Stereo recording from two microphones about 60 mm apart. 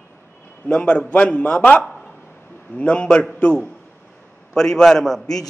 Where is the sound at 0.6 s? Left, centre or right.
Centre.